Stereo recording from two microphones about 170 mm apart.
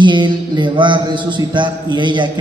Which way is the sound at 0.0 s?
25° right (ahead or behind).